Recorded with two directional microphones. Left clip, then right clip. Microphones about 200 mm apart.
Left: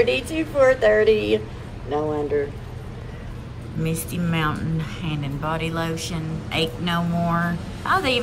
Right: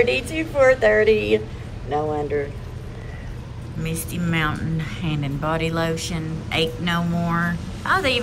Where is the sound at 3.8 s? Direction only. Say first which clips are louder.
Left 1 dB; 20° left (ahead or behind).